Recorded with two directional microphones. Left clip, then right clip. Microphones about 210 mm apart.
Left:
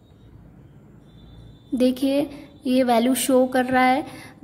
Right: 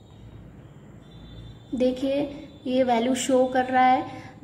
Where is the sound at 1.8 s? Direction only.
40° left (ahead or behind).